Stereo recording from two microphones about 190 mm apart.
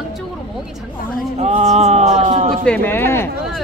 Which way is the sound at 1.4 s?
35° right (ahead or behind).